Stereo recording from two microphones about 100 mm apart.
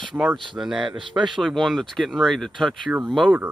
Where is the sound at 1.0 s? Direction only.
50° right (ahead or behind).